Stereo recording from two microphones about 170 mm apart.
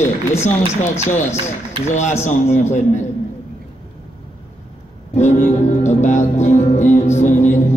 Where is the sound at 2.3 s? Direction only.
45° left (ahead or behind).